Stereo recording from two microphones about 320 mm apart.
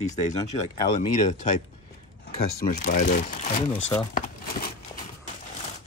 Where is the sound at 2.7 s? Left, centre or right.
Left.